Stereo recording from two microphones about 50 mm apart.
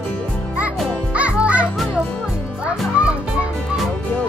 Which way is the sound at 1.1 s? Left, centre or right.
Right.